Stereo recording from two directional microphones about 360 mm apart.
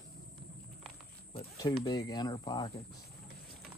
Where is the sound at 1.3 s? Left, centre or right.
Centre.